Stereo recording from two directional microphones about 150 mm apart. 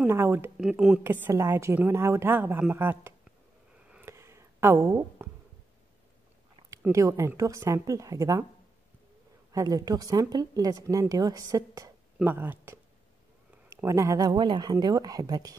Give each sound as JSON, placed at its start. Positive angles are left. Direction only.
{"t": 0.0, "sound": "a woman's voice", "side_deg": -15}
{"t": 0.7, "sound": "a woman's voice", "side_deg": -5}
{"t": 3.9, "sound": "a sound", "side_deg": -15}
{"t": 6.9, "sound": "speech", "side_deg": -20}
{"t": 9.5, "sound": "speech", "side_deg": -25}
{"t": 12.2, "sound": "a woman's voice", "side_deg": -10}
{"t": 13.7, "sound": "speech", "side_deg": -20}